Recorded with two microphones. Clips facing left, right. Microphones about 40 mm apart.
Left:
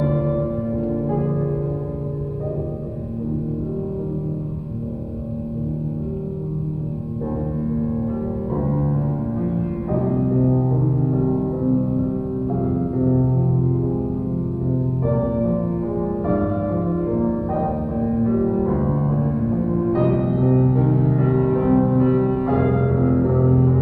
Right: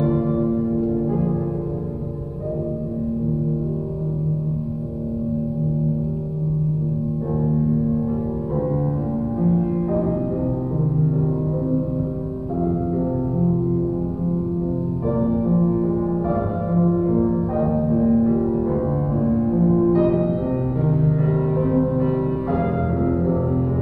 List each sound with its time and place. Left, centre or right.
0.0 s music: centre
7.5 s music: centre
9.4 s music: centre
15.0 s music: centre